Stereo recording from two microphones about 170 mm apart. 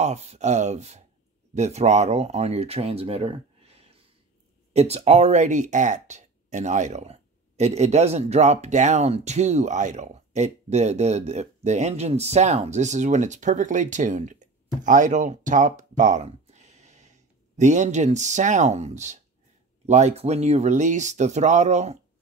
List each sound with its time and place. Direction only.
0.0 s speech: 40° right (ahead or behind)